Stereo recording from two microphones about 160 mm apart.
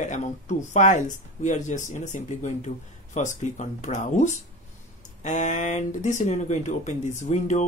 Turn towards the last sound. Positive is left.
turn(degrees=50)  # may be behind; listen again after turning